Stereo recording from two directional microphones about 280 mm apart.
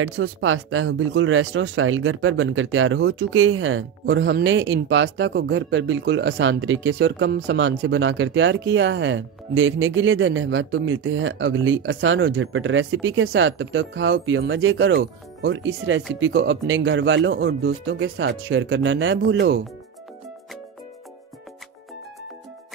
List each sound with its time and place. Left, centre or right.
0.0 s speech: right